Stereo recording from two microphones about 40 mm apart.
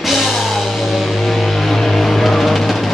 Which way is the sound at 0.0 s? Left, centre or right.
Centre.